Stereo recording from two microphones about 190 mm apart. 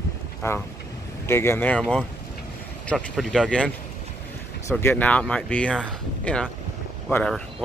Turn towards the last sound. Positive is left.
turn(degrees=5)  # may be behind; listen again after turning